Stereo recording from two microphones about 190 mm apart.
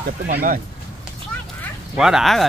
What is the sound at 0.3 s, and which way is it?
Speech, 50° right (ahead or behind).